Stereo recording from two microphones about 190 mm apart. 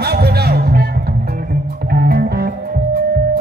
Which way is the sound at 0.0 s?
55° right (ahead or behind).